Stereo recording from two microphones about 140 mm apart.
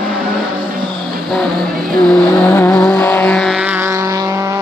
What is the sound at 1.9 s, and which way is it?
Vehicle, 15° left (ahead or behind).